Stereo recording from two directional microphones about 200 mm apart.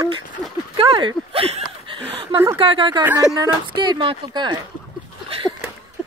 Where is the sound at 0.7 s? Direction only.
25° right (ahead or behind).